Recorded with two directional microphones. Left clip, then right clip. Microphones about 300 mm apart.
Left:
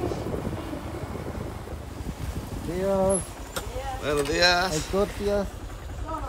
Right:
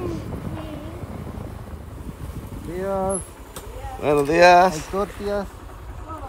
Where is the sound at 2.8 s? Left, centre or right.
Centre.